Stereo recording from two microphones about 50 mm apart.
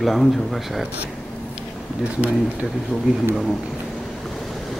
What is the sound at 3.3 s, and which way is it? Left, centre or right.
Speech, centre.